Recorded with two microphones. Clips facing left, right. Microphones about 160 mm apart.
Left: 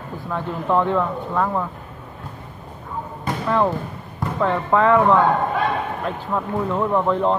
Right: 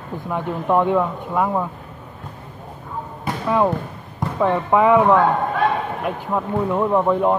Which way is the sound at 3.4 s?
10° right (ahead or behind).